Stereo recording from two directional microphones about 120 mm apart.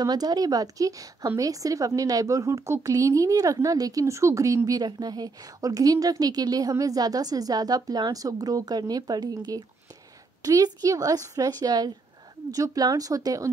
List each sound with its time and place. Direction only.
0.0 s a woman's voice: 35° right (ahead or behind)